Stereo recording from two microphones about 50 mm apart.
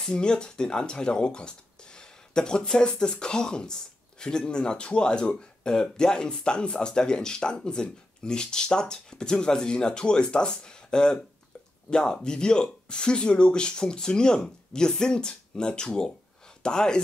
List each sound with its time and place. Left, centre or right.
0.0 s speech: centre